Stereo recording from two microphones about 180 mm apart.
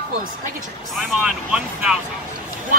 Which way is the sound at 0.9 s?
5° right (ahead or behind).